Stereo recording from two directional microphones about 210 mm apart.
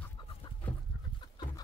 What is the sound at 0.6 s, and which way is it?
Chicken, 5° left (ahead or behind).